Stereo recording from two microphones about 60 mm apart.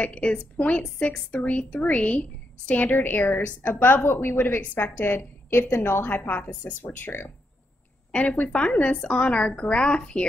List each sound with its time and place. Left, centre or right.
0.0 s a woman's voice: centre; by 7.3 s left
8.1 s a woman's voice: left